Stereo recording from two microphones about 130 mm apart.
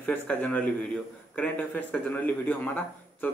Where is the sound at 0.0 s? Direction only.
10° left (ahead or behind).